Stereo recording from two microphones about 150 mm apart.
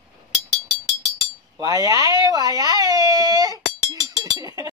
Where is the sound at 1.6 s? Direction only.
25° right (ahead or behind).